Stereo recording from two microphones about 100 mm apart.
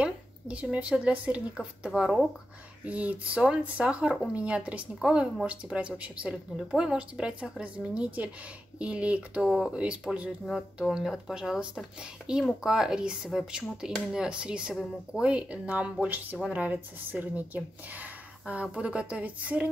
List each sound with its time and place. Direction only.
0.0 s speech: 10° right (ahead or behind)
1.9 s speech: centre (ahead or behind)
2.8 s speech: 15° right (ahead or behind)